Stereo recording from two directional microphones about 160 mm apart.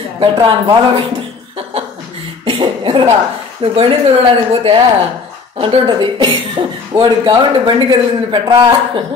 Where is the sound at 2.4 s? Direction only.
30° right (ahead or behind).